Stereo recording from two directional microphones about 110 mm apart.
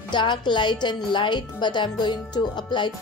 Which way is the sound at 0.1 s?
45° left (ahead or behind).